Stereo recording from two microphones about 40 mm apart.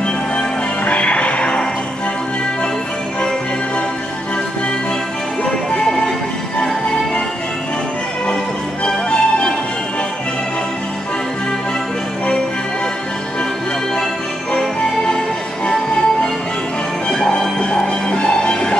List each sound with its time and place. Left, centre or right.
0.8 s music: left
5.4 s music: centre
8.8 s music: centre
15.0 s music: centre
17.1 s music: centre